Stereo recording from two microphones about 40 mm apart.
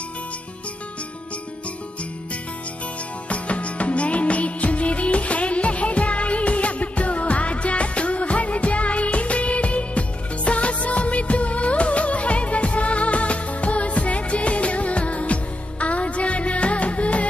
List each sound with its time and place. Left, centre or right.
3.3 s music: left